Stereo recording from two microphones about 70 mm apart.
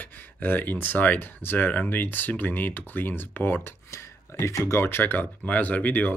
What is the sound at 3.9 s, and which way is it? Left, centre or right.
Speech, left.